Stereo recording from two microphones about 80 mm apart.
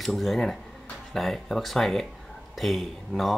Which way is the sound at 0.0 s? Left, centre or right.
Centre.